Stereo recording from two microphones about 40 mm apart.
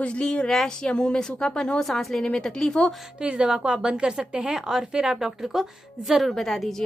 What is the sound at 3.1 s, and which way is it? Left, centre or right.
A woman's voice, right.